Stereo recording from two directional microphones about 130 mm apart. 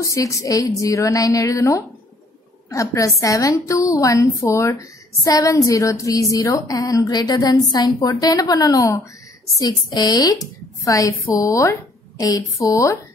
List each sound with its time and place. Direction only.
0.0 s a woman's voice: 25° left (ahead or behind)